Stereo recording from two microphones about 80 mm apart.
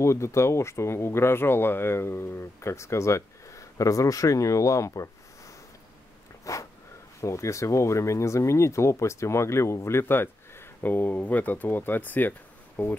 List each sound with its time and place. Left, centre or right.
0.0 s speech: left
6.4 s a sound: left
7.2 s speech: left